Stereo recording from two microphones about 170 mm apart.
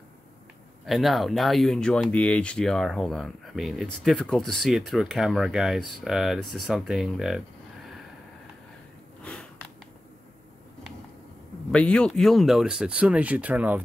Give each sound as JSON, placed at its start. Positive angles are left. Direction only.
{"t": 0.8, "sound": "speech", "side_deg": 0}
{"t": 9.2, "sound": "sniff", "side_deg": 5}
{"t": 11.7, "sound": "speech", "side_deg": 5}